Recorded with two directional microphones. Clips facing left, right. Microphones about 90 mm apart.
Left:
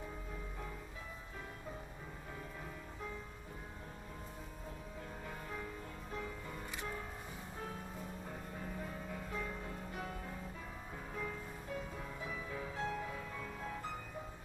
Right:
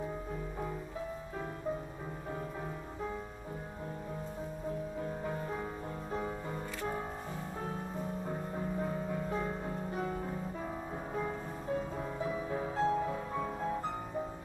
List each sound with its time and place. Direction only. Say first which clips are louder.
5.2 s music: right 8 dB; 30° right (ahead or behind)
9.1 s music: right 8 dB; 35° right (ahead or behind)